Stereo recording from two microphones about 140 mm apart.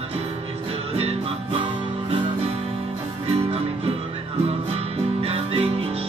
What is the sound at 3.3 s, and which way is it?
Music, 45° right (ahead or behind).